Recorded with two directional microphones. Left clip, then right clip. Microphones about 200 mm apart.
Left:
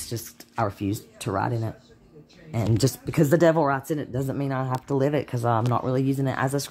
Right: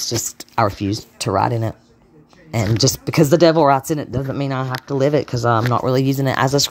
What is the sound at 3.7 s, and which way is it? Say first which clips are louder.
Speech: right 10 dB; 40° right (ahead or behind).